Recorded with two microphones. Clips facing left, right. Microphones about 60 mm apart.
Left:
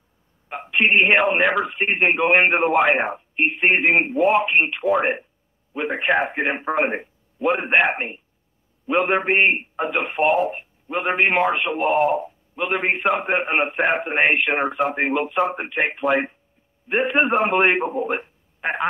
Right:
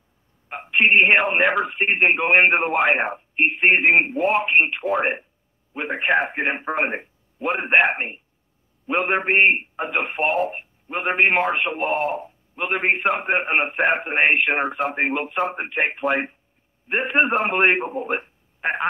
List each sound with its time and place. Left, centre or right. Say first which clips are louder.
0.5 s a man's voice: right 1 dB; centre
10.2 s a man's voice: left 5 dB; centre